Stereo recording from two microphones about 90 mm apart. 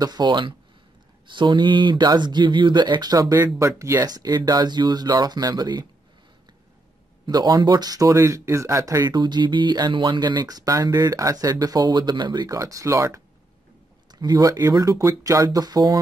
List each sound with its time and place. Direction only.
0.0 s speech: 50° right (ahead or behind)
7.2 s speech: 45° right (ahead or behind)
9.1 s speech: 55° right (ahead or behind)
12.4 s speech: 40° right (ahead or behind)
14.1 s speech: 50° right (ahead or behind)